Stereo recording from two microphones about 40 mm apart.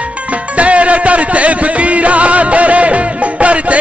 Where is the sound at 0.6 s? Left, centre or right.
Right.